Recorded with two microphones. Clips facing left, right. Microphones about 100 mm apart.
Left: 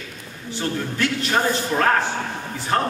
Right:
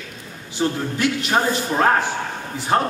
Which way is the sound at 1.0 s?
15° right (ahead or behind).